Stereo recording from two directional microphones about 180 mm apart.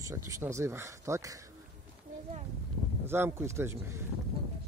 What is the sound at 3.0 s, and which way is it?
Speech, 15° right (ahead or behind).